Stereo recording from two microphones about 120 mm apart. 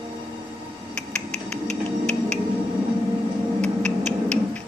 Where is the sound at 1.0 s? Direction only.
5° left (ahead or behind).